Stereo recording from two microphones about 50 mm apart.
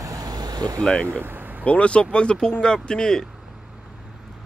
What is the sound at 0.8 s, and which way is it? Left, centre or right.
Speech, centre.